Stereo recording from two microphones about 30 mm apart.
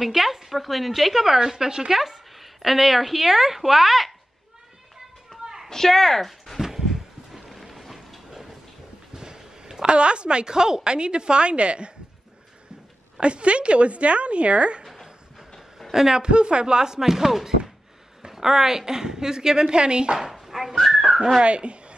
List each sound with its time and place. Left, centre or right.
0.0 s a woman's voice: centre
5.7 s speech: centre
6.6 s a sound: centre
8.3 s a sound: centre
9.1 s a sound: right
9.9 s a woman's voice: right
13.2 s a woman's voice: right
15.9 s a man's voice: centre
16.2 s a woman's voice: right
20.4 s whistling: centre
21.5 s speech: right